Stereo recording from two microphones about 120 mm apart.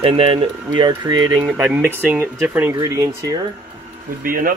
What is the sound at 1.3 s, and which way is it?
Speech, 10° right (ahead or behind).